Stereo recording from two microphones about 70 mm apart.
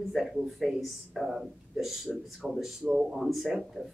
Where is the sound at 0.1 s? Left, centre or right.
Centre.